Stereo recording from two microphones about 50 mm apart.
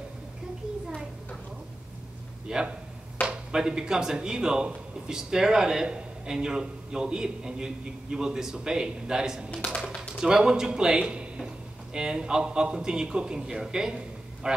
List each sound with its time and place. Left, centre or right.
2.4 s speech: centre
9.5 s speech: centre
9.8 s speech: centre